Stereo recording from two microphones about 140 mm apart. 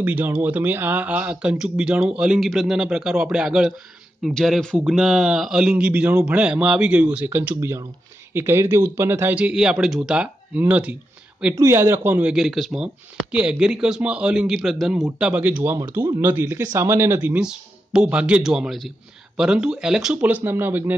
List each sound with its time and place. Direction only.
0.0 s speech: 10° right (ahead or behind)